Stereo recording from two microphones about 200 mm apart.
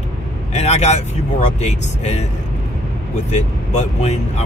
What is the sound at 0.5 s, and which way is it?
Speech, 35° left (ahead or behind).